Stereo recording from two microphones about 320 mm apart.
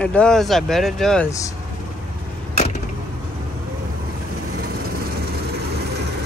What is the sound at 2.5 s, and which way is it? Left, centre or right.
Vehicle, left.